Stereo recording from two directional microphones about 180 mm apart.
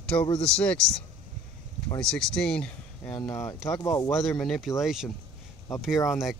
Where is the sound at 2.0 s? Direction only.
5° left (ahead or behind).